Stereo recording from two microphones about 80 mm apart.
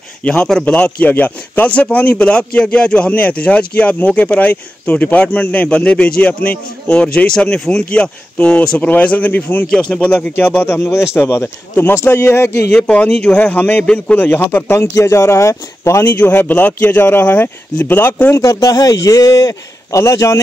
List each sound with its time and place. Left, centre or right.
0.2 s a man's voice: centre
9.7 s a man's voice: centre
10.6 s speech: left
12.7 s a man's voice: centre
14.7 s speech: left
16.2 s speech: left
18.3 s speech: left